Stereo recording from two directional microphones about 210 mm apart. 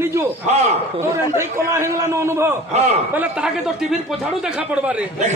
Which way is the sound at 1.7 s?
10° right (ahead or behind).